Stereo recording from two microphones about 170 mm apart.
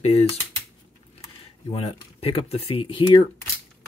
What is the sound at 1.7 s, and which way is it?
Speech, 35° left (ahead or behind).